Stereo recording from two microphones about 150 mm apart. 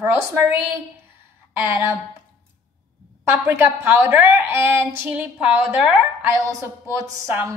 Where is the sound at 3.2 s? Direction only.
15° right (ahead or behind).